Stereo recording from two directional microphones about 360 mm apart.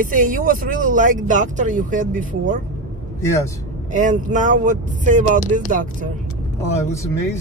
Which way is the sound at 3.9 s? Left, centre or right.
Right.